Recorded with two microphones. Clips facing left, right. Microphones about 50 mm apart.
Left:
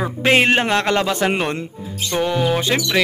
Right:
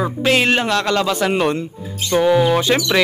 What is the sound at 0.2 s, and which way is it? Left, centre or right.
A man's voice, left.